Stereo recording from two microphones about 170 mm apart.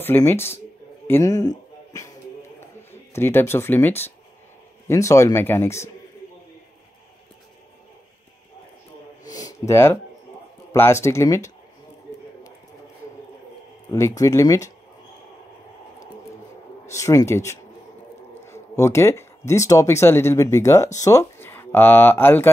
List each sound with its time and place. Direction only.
0.0 s speech: 15° left (ahead or behind)
9.3 s a sound: 20° left (ahead or behind)
10.7 s speech: 15° left (ahead or behind)
13.8 s speech: 20° left (ahead or behind)
16.8 s speech: 20° left (ahead or behind)